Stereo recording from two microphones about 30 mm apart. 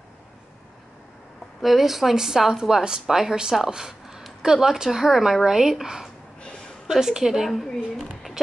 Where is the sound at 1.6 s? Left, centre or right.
Centre.